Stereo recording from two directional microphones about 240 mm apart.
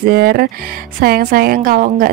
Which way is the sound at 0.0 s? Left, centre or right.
Right.